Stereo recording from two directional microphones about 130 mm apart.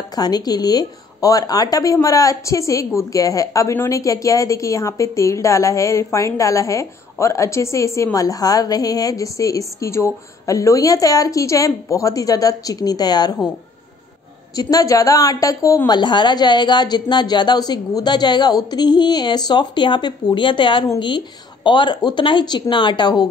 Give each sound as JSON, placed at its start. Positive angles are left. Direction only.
{"t": 0.1, "sound": "a woman's voice", "side_deg": 30}
{"t": 14.5, "sound": "a woman's voice", "side_deg": 30}